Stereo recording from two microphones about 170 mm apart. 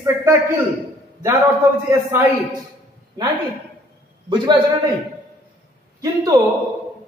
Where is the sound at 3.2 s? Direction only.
20° right (ahead or behind).